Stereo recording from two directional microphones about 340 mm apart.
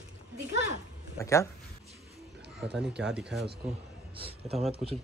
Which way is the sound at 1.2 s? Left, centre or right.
Centre.